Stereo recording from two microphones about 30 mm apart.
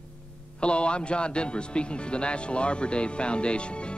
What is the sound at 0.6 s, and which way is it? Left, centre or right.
Speech, left.